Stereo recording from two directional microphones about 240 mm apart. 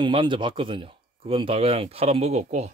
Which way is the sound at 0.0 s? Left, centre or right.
Centre.